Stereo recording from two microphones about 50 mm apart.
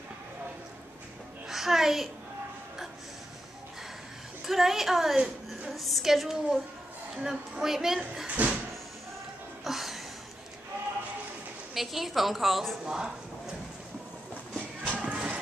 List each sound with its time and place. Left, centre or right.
1.5 s music: centre
4.5 s a woman's voice: centre
7.2 s a woman's voice: centre
7.6 s a woman's voice: centre
8.3 s a sound: right
9.7 s a sound: centre
11.7 s a woman's voice: centre
12.8 s a woman's voice: centre
15.0 s music: right